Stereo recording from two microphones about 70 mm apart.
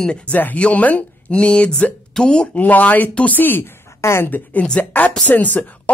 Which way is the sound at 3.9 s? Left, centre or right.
Left.